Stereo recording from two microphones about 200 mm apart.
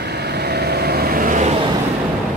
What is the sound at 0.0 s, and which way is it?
Vehicle, 55° right (ahead or behind).